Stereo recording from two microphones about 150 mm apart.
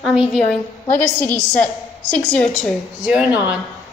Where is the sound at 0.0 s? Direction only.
Centre (ahead or behind).